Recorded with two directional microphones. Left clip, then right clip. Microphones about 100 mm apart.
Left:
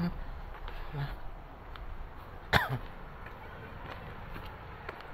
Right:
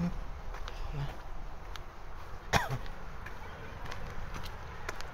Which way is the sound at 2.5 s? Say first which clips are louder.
Left 2 dB; 55° left (ahead or behind).